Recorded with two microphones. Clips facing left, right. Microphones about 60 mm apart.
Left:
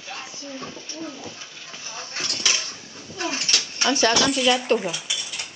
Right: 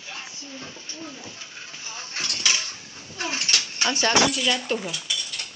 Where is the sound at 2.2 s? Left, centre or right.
Right.